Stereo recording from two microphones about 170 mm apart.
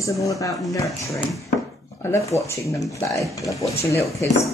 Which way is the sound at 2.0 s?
15° left (ahead or behind).